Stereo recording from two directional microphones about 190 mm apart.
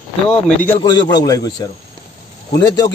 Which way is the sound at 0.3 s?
10° left (ahead or behind).